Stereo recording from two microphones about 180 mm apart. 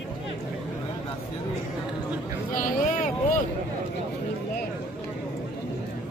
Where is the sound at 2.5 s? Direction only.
45° left (ahead or behind).